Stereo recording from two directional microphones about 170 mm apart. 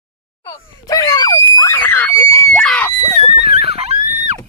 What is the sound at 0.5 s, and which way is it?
Screaming, 20° left (ahead or behind).